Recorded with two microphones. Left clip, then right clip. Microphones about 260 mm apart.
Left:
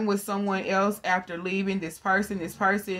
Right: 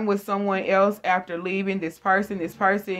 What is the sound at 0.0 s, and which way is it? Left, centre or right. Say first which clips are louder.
Speech: right 4 dB; left.